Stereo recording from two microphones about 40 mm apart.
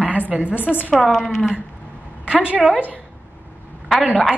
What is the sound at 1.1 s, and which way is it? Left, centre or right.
Speech, centre.